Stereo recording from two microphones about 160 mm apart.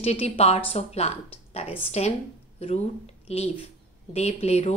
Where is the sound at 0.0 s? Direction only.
40° left (ahead or behind).